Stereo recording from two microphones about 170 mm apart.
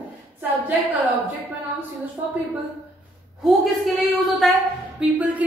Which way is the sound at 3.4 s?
Centre (ahead or behind).